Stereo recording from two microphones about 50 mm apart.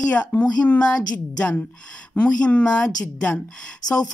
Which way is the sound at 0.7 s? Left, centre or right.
Left.